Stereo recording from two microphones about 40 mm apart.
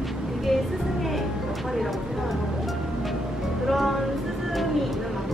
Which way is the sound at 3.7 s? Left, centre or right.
Centre.